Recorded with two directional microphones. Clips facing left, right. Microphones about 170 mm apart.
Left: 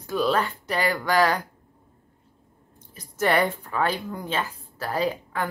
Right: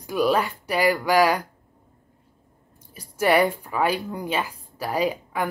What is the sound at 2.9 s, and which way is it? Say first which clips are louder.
Speech: right 3 dB; 10° right (ahead or behind).